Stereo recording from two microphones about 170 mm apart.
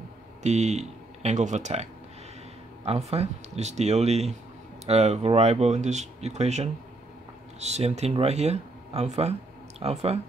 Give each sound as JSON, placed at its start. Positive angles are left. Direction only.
{"t": 0.4, "sound": "speech", "side_deg": -40}